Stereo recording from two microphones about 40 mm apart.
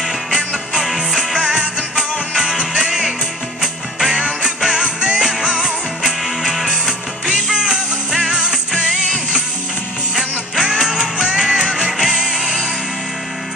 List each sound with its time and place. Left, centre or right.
0.3 s music: right
6.0 s music: centre
10.5 s music: centre